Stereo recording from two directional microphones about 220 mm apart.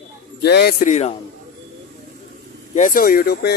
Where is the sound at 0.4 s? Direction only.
50° left (ahead or behind); by 1.1 s 30° left (ahead or behind).